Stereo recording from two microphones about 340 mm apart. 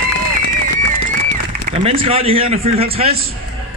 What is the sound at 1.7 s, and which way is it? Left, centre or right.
Speech, centre.